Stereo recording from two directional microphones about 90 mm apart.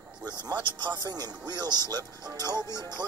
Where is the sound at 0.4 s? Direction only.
50° right (ahead or behind).